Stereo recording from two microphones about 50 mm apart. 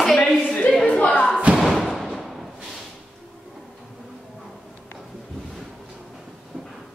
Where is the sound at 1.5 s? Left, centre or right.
Centre.